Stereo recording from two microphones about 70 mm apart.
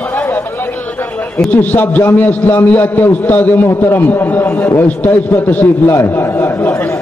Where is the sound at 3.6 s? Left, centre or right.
Left.